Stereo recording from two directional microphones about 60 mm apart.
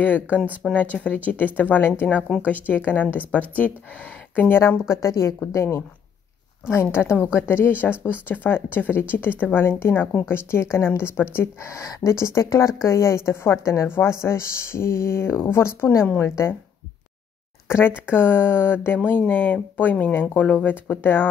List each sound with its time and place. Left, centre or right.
0.6 s speech: centre
1.0 s speech: left
4.5 s speech: left
17.6 s speech: left